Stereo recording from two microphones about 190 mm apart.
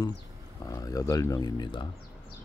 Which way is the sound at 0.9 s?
15° left (ahead or behind).